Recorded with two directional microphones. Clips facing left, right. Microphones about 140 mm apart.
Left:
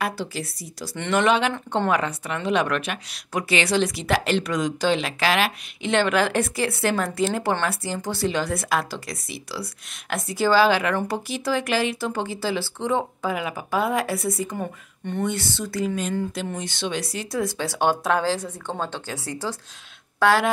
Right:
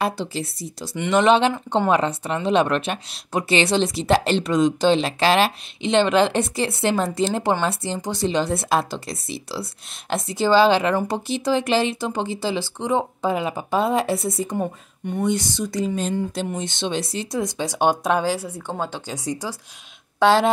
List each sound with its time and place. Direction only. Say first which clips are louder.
0.0 s a woman's voice: right 3 dB; 25° right (ahead or behind)
0.9 s speech: right 4 dB; 10° right (ahead or behind)
1.2 s a woman's voice: right 4 dB; 25° right (ahead or behind)
15.0 s a woman's voice: right 3 dB; 15° right (ahead or behind)
20.2 s speech: right 3 dB; 25° right (ahead or behind)